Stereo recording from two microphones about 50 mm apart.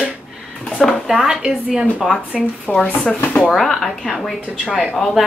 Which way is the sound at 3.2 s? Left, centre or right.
Left.